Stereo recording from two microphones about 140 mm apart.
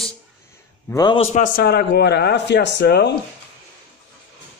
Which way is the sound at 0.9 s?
30° left (ahead or behind).